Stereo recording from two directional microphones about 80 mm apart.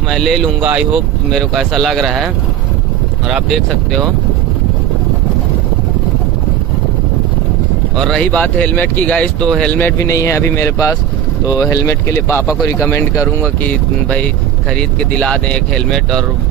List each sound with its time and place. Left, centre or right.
0.1 s speech: centre
0.6 s speech: centre
1.3 s speech: centre
3.4 s speech: centre
8.0 s speech: centre
9.7 s speech: left
9.9 s speech: left
13.7 s speech: centre